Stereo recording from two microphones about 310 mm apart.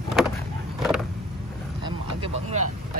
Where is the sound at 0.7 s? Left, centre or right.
Centre.